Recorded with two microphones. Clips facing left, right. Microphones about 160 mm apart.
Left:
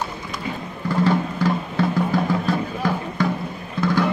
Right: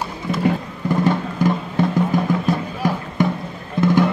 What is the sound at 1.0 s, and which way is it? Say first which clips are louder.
Music: even; 20° right (ahead or behind).